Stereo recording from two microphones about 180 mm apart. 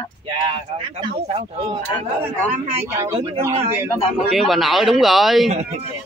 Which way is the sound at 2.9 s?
15° right (ahead or behind).